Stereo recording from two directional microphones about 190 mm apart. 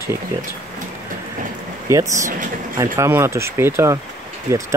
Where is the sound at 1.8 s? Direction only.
15° right (ahead or behind).